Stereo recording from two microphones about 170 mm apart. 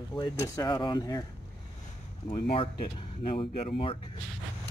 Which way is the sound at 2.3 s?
30° left (ahead or behind).